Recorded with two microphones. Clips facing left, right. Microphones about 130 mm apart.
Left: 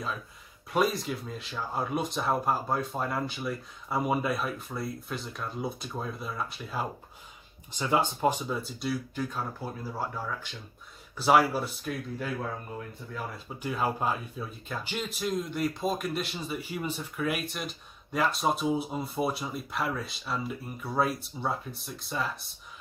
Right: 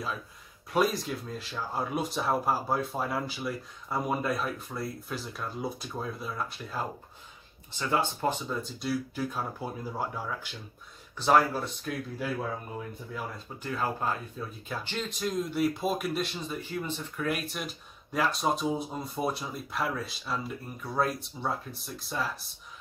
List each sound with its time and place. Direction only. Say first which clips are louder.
0.7 s speech: even; centre (ahead or behind)
7.7 s speech: left 2 dB; 15° left (ahead or behind); by 10.5 s 10° right (ahead or behind)
11.1 s speech: left 1 dB; 10° left (ahead or behind)
13.6 s speech: left 2 dB; 15° left (ahead or behind)
15.5 s speech: right 2 dB; 5° right (ahead or behind)